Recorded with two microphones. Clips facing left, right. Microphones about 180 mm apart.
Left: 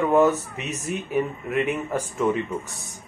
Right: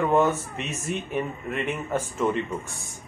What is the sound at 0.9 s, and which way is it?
Speech, 5° left (ahead or behind).